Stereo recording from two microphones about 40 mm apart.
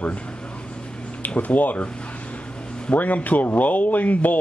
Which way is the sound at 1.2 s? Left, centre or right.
Left.